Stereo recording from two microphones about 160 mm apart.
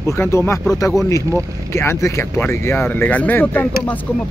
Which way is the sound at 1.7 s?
15° left (ahead or behind).